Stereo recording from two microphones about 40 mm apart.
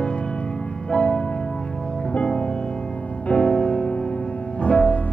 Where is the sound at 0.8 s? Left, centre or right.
Left.